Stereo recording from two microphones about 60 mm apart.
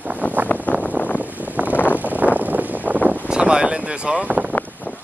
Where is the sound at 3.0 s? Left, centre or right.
Centre.